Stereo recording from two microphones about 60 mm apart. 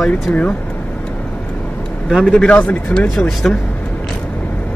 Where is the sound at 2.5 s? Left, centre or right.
Left.